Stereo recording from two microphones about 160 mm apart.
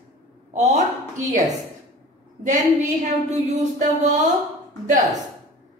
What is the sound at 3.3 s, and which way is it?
A woman's voice, 45° right (ahead or behind).